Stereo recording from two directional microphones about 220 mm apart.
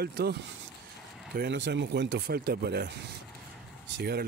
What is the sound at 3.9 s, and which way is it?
Speech, 45° right (ahead or behind).